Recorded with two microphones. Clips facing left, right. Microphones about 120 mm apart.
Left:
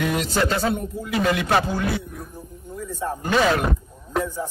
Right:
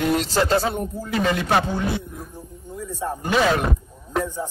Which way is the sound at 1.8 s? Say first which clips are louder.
Even; 20° right (ahead or behind).